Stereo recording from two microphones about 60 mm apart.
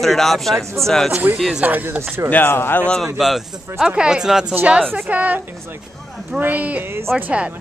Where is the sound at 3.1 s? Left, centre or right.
Centre.